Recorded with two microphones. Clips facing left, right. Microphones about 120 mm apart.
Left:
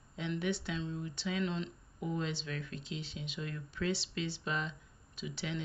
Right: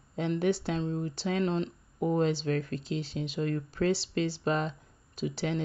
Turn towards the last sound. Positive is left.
turn(degrees=-40)  # may be behind; listen again after turning